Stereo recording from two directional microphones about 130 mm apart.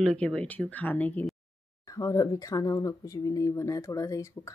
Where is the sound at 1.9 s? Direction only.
25° left (ahead or behind).